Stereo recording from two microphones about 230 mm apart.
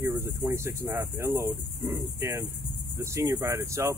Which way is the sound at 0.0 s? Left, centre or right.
Centre.